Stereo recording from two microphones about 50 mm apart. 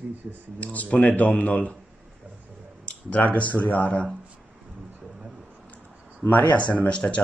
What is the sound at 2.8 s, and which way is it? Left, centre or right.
Speech, left.